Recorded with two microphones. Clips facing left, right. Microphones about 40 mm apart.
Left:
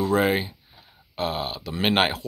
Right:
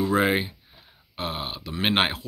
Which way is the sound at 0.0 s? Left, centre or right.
Centre.